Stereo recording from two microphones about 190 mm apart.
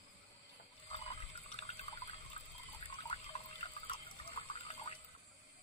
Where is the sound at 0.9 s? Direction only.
30° left (ahead or behind).